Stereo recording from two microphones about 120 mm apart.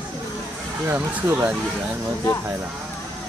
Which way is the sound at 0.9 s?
15° right (ahead or behind).